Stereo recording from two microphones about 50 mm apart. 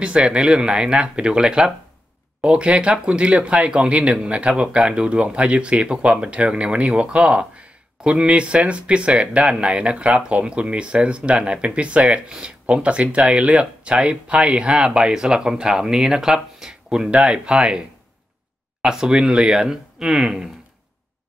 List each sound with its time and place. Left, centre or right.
0.0 s speech: right